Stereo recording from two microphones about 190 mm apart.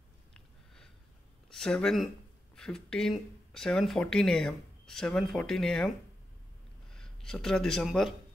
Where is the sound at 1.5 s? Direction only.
5° left (ahead or behind).